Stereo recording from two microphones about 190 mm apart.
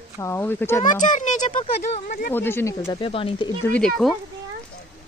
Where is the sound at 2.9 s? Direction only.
30° left (ahead or behind).